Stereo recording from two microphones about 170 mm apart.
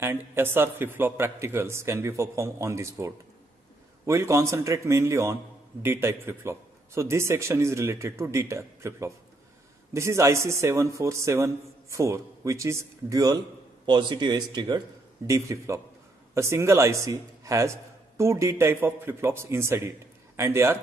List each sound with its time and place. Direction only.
0.0 s a man's voice: 15° right (ahead or behind)